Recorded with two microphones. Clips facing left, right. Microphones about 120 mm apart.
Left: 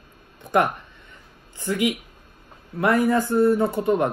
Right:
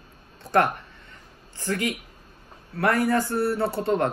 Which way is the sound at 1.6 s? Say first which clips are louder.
Left 4 dB; 15° left (ahead or behind).